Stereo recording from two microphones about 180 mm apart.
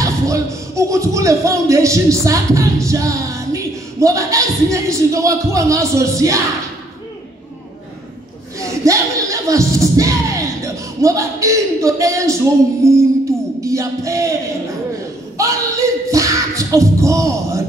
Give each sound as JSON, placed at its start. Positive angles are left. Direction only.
{"t": 0.0, "sound": "speech", "side_deg": -15}
{"t": 8.5, "sound": "speech", "side_deg": -15}
{"t": 15.3, "sound": "speech", "side_deg": -15}